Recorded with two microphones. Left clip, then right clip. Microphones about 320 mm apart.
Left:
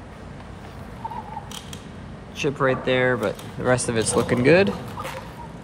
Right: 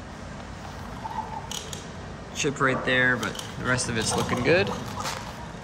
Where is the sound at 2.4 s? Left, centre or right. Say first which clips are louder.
Left 2 dB; centre.